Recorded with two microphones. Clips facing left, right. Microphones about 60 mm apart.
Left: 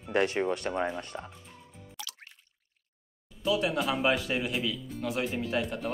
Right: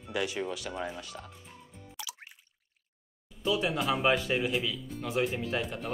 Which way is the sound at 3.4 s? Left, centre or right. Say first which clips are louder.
Left 1 dB; centre.